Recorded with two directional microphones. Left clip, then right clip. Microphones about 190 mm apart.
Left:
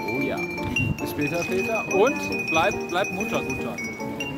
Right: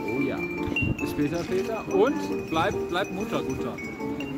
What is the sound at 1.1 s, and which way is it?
Speech, 5° left (ahead or behind).